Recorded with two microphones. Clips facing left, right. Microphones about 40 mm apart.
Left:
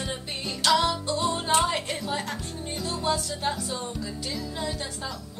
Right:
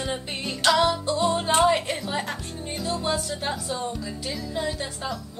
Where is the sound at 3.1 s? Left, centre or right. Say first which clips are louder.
Right 1 dB; centre.